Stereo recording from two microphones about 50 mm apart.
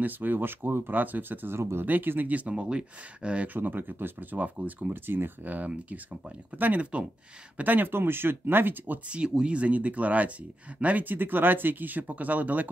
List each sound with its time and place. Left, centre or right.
0.0 s speech: right
1.6 s speech: right
1.9 s speech: right
2.5 s speech: right
3.4 s speech: right
5.0 s speech: right
7.5 s speech: right
9.4 s speech: right